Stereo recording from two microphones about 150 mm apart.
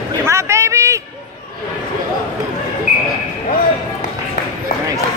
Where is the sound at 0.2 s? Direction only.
20° right (ahead or behind).